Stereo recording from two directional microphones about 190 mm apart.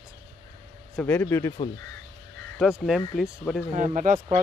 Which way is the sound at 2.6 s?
Centre (ahead or behind).